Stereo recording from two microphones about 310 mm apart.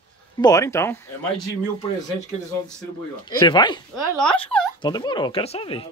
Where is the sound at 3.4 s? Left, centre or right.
Centre.